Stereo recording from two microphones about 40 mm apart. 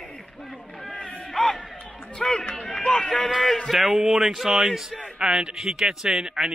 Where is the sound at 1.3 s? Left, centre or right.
Centre.